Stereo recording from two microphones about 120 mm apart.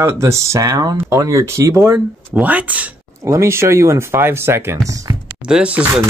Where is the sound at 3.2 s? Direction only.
25° right (ahead or behind).